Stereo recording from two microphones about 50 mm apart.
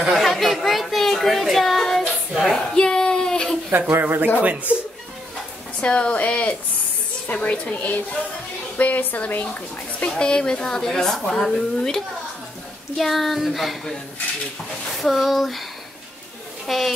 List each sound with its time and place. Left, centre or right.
0.1 s a sound: centre
2.6 s child singing: centre
4.0 s speech: right
5.8 s a woman's voice: left; by 13.9 s centre
15.0 s speech: centre
16.6 s speech: centre